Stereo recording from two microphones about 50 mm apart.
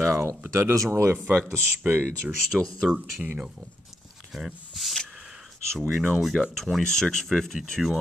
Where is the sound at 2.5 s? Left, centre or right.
Centre.